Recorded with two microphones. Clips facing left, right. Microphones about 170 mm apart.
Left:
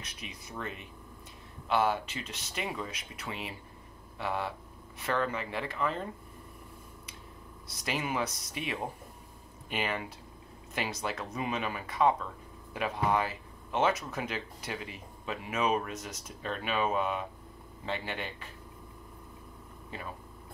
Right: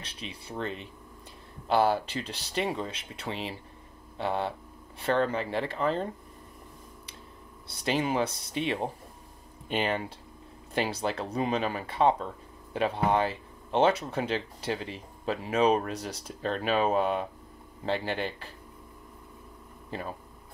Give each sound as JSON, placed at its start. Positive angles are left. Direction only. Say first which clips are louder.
{"t": 0.0, "sound": "speech", "louder": "right 4 dB", "side_deg": -30}
{"t": 7.6, "sound": "speech", "louder": "right 6 dB", "side_deg": -30}
{"t": 19.9, "sound": "speech", "louder": "right 6 dB", "side_deg": -35}